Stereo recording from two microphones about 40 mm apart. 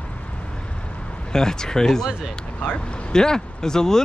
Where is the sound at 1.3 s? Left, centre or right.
Centre.